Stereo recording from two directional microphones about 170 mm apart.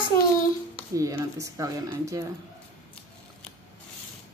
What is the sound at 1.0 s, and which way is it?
Speech, 20° right (ahead or behind).